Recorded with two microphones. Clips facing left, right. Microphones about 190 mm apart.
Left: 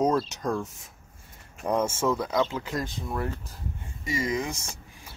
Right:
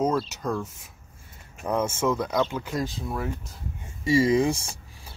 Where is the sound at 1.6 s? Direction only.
10° left (ahead or behind).